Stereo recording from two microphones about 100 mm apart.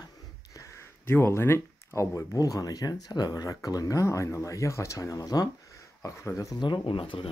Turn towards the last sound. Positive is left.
turn(degrees=60)  # may be behind; listen again after turning